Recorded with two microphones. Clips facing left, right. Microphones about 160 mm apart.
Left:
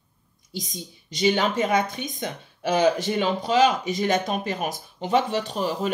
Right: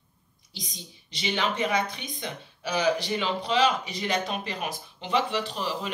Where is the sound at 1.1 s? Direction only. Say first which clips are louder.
Left 7 dB; 45° left (ahead or behind).